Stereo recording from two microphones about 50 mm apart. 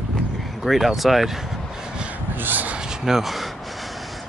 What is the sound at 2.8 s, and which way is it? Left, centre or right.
Gasp, centre.